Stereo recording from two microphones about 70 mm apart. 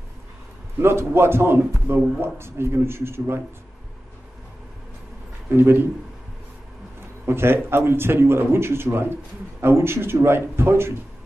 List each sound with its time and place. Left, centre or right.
0.7 s a man's voice: right
5.5 s a man's voice: right
7.2 s a man's voice: right